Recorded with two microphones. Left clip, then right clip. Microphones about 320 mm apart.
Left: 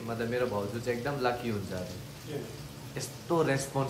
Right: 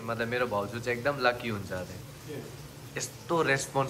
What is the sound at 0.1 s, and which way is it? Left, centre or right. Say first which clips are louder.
Speech: right 2 dB; centre.